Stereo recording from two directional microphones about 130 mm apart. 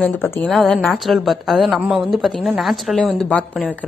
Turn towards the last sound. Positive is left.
turn(degrees=5)  # may be behind; listen again after turning